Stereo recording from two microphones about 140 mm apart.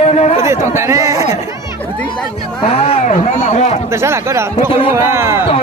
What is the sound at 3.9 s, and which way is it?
Speech, 20° right (ahead or behind).